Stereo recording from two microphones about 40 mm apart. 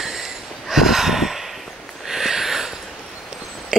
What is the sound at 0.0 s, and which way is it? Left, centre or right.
Snort, centre.